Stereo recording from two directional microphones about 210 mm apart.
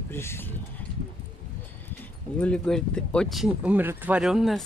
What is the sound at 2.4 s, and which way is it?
Speech, 5° left (ahead or behind).